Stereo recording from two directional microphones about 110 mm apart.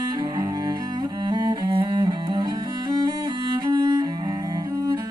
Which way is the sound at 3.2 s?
40° right (ahead or behind).